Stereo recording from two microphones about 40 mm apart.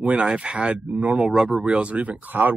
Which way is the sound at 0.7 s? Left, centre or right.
Right.